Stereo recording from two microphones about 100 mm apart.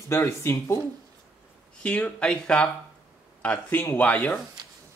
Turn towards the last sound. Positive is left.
turn(degrees=15)  # may be behind; listen again after turning